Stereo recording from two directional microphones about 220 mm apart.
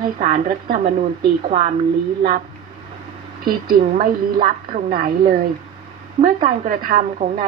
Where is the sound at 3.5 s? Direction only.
40° right (ahead or behind).